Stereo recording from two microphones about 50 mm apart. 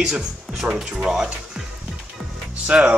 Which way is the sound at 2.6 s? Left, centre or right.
Right.